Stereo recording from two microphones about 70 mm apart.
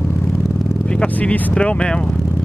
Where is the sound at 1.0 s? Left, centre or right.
Centre.